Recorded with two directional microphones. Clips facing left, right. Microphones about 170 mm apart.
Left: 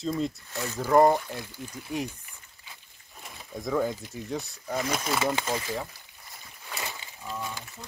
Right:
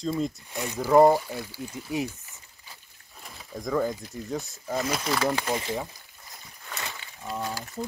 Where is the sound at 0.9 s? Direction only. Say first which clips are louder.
Right 2 dB; 5° right (ahead or behind).